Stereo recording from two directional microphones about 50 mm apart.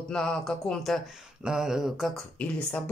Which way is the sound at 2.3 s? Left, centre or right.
Left.